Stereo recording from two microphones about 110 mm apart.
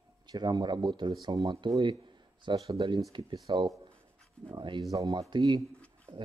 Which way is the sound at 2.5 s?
45° right (ahead or behind).